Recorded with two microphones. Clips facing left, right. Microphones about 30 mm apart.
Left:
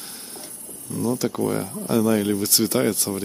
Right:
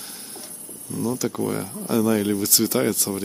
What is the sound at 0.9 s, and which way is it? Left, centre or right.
Speech, centre.